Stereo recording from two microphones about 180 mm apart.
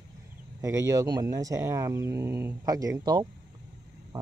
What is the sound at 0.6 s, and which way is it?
Speech, 20° right (ahead or behind).